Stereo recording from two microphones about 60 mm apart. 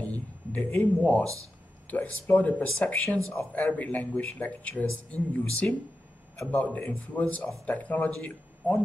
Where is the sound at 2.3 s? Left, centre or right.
Left.